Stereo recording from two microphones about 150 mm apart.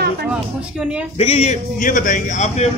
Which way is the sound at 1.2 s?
45° left (ahead or behind).